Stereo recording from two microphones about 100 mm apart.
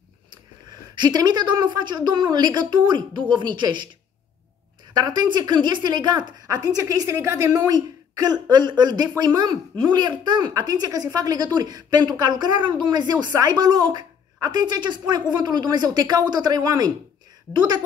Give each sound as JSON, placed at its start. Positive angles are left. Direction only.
{"t": 0.9, "sound": "speech", "side_deg": -45}
{"t": 4.9, "sound": "a woman's voice", "side_deg": -45}